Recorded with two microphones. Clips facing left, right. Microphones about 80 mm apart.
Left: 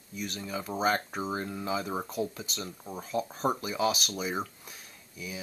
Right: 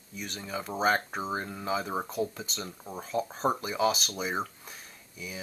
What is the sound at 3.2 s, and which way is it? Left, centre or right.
Speech, right.